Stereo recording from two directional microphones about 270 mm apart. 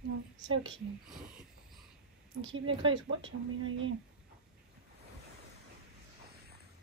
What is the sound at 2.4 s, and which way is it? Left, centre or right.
Speech, right.